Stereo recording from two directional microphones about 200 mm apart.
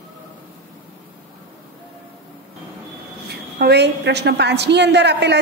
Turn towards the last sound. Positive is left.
turn(degrees=-55)  # may be behind; listen again after turning